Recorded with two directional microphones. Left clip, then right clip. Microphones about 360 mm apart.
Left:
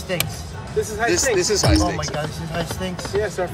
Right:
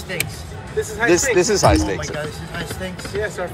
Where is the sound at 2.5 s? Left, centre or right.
Left.